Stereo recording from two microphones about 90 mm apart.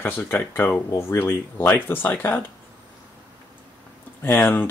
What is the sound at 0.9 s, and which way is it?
Speech, 30° left (ahead or behind).